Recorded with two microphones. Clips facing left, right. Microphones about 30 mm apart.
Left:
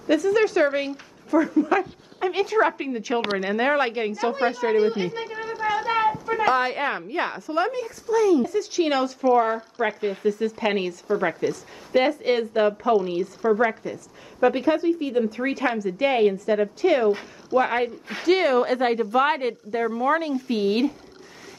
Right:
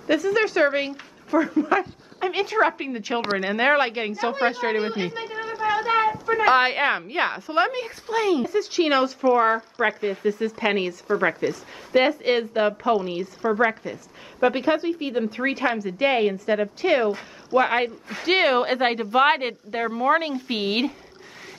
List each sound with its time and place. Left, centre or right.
0.0 s a woman's voice: centre; by 4.9 s right
4.9 s a sound: right
6.5 s a woman's voice: right
8.5 s a woman's voice: right
17.5 s a woman's voice: right
19.9 s speech: centre
20.4 s a woman's voice: right